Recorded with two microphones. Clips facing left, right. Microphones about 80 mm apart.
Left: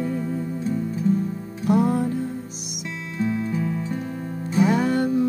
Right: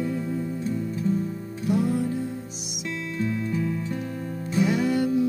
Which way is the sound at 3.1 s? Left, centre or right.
Centre.